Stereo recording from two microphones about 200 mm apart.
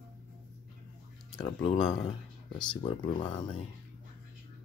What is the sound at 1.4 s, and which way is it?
Speech, 25° left (ahead or behind).